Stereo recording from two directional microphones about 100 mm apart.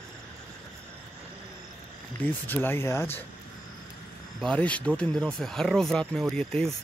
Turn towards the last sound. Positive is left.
turn(degrees=5)  # may be behind; listen again after turning